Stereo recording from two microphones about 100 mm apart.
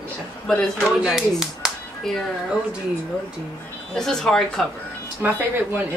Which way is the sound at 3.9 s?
5° left (ahead or behind).